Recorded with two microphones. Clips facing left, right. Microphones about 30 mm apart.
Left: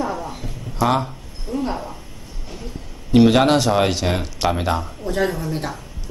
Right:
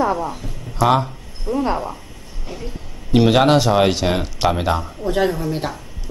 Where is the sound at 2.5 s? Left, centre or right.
Centre.